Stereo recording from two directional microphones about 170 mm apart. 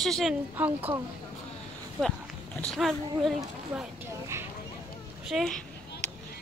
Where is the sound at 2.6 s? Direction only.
Centre (ahead or behind).